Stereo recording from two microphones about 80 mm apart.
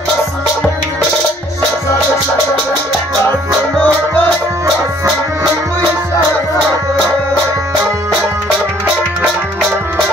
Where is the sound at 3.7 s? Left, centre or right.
Left.